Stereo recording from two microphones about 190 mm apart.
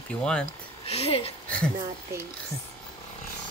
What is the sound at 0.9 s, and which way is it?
Speech, 30° left (ahead or behind).